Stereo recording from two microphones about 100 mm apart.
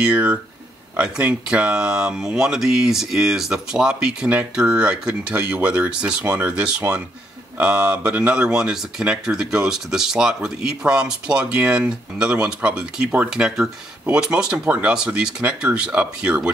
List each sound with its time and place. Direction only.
0.0 s speech: 10° right (ahead or behind)